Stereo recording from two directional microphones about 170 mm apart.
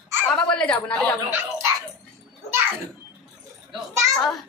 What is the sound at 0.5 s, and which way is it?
Speech, 5° left (ahead or behind).